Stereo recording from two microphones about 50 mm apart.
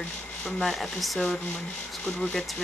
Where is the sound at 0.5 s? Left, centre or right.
Centre.